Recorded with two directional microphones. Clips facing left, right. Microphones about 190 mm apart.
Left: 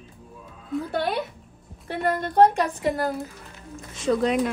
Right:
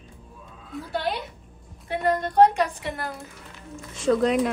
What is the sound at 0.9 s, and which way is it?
Speech, 55° left (ahead or behind).